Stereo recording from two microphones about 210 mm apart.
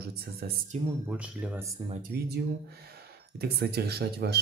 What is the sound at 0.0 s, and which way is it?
Speech, 50° right (ahead or behind).